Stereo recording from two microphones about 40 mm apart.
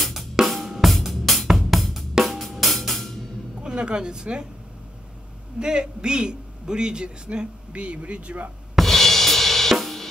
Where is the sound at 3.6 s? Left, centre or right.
Right.